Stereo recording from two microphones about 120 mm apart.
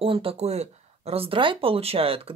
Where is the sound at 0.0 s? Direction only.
50° right (ahead or behind).